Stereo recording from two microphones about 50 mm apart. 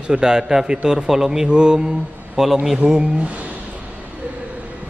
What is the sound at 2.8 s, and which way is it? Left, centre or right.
Speech, right.